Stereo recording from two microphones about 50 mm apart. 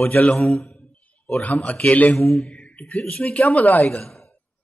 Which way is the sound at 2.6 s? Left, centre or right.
Left.